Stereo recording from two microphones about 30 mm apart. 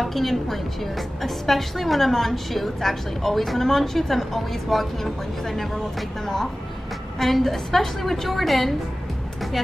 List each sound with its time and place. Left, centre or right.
0.0 s a woman's voice: centre